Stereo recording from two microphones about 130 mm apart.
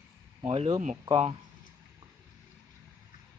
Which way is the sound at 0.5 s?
55° right (ahead or behind).